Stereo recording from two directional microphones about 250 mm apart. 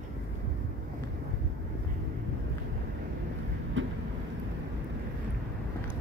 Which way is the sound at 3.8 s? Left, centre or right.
Right.